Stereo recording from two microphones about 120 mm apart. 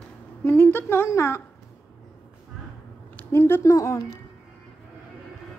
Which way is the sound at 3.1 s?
20° left (ahead or behind).